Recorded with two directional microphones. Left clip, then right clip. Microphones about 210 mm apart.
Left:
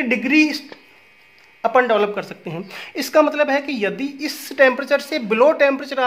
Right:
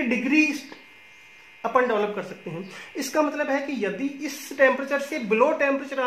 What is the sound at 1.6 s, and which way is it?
Speech, 45° left (ahead or behind).